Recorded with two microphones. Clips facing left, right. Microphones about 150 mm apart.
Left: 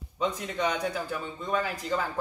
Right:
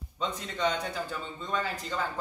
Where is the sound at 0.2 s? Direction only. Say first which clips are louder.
Left 2 dB; 10° left (ahead or behind).